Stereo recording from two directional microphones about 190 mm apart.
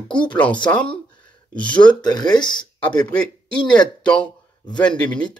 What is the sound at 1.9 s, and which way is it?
Speech, 20° left (ahead or behind).